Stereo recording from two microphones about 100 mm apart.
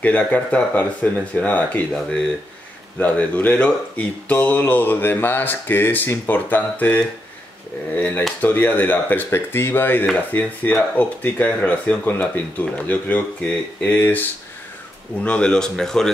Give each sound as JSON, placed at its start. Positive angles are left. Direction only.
{"t": 0.0, "sound": "speech", "side_deg": 15}
{"t": 15.2, "sound": "speech", "side_deg": 10}